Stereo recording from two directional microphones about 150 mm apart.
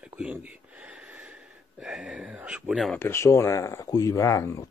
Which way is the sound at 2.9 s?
15° left (ahead or behind).